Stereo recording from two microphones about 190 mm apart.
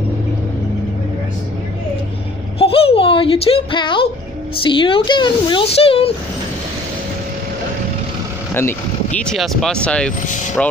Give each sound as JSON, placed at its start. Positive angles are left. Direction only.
{"t": 2.6, "sound": "a sound", "side_deg": 30}
{"t": 4.6, "sound": "speech", "side_deg": 25}
{"t": 8.5, "sound": "speech", "side_deg": 10}